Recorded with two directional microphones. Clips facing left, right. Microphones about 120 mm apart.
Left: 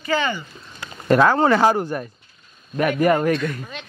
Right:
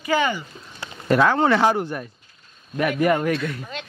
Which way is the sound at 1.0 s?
40° left (ahead or behind).